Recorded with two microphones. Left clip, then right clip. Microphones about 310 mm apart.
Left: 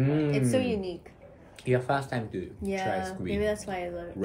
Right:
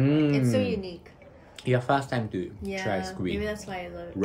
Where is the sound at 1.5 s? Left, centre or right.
Right.